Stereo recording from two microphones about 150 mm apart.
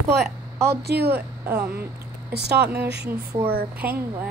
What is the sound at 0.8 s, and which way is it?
Speech, 90° right.